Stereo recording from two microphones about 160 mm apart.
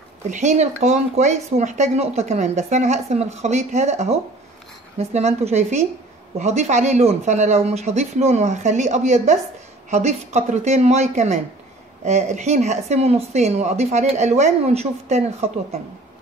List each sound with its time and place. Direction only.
0.3 s speech: 45° right (ahead or behind)